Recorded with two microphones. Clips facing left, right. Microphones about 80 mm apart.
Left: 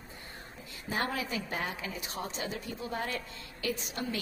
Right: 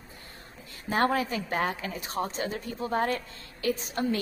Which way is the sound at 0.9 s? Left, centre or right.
Right.